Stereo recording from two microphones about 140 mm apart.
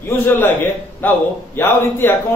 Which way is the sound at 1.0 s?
15° left (ahead or behind).